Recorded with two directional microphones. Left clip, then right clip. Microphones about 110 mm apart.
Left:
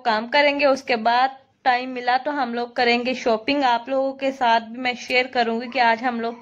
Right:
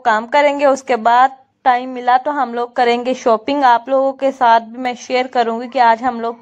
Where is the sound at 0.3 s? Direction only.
30° right (ahead or behind).